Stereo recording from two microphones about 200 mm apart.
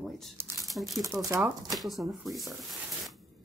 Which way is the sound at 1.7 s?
Centre (ahead or behind).